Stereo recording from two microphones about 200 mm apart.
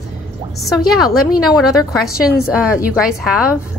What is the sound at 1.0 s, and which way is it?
Speech, 20° left (ahead or behind).